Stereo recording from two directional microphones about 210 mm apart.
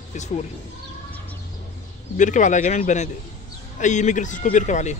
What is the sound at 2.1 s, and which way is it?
Speech, 35° left (ahead or behind).